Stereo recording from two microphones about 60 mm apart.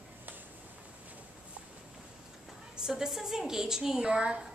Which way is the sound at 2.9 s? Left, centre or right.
Centre.